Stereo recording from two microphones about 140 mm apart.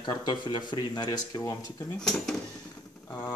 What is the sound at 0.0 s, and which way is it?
Speech, 30° left (ahead or behind).